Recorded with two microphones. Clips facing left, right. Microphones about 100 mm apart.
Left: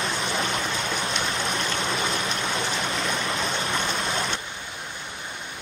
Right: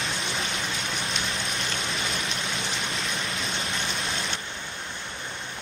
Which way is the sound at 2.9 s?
35° left (ahead or behind).